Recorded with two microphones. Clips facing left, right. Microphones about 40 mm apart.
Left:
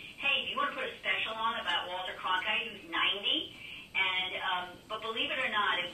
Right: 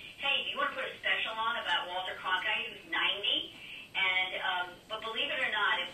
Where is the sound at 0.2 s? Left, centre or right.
Centre.